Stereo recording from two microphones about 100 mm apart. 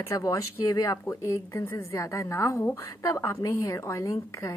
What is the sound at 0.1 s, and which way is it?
A woman's voice, 30° left (ahead or behind).